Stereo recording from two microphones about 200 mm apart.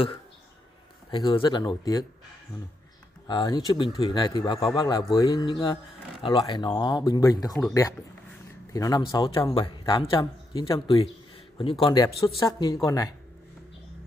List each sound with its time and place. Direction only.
1.1 s speech: 25° left (ahead or behind)
3.3 s speech: 20° left (ahead or behind)
8.7 s speech: 20° left (ahead or behind)